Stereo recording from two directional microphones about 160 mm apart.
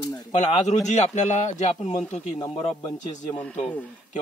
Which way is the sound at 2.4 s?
25° left (ahead or behind).